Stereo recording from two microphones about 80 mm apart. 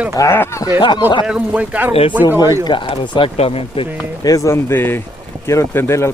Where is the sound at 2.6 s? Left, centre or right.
Left.